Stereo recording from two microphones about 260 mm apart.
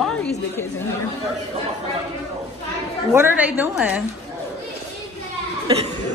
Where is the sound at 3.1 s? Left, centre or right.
Centre.